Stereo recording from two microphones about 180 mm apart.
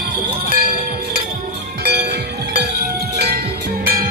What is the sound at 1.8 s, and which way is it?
Music, 60° right (ahead or behind).